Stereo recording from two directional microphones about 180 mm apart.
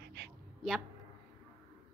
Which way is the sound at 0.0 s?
70° right (ahead or behind).